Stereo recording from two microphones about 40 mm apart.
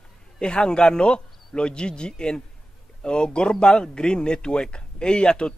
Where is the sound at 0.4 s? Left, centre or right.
Left.